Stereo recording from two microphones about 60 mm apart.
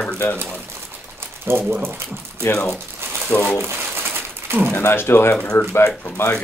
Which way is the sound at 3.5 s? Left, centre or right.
Right.